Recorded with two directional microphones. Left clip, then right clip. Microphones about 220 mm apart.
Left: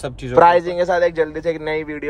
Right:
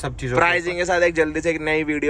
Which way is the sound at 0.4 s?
Centre (ahead or behind).